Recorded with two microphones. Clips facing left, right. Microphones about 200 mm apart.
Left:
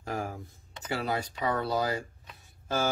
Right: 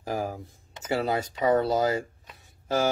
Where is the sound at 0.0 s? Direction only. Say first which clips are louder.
Right 4 dB; 20° right (ahead or behind).